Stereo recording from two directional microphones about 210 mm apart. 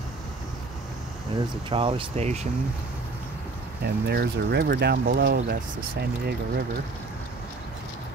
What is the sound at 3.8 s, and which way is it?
Speech, 50° right (ahead or behind).